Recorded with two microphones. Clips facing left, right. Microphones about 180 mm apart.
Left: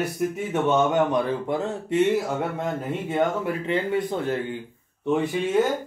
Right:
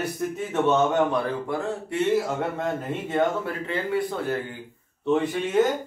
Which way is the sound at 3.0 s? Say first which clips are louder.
Even; 10° left (ahead or behind).